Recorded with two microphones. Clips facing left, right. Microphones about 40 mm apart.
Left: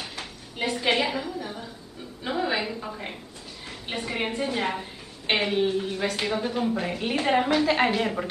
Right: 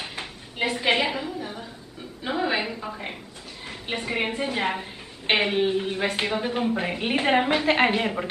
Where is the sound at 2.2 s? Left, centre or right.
Centre.